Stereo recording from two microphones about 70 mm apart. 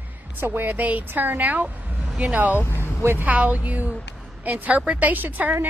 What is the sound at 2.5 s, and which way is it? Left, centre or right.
Speech, left.